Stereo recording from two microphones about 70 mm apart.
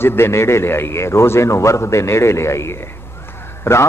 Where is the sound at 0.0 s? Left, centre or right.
Left.